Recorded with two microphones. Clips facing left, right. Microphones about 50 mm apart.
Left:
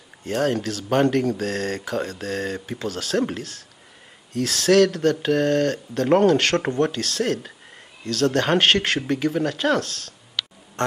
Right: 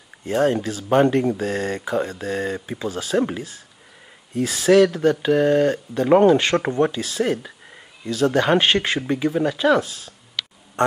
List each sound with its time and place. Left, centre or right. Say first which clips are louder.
0.2 s speech: right 3 dB; centre